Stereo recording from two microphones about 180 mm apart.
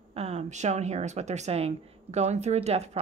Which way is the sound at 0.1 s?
35° right (ahead or behind).